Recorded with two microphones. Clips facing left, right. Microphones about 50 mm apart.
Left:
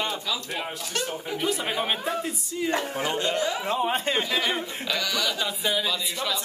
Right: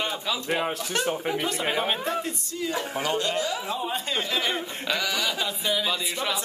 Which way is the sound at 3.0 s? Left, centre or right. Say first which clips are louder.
Even; left.